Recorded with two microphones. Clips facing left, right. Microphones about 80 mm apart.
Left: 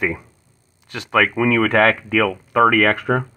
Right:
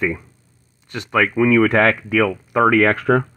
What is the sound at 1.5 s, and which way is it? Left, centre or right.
Speech, left.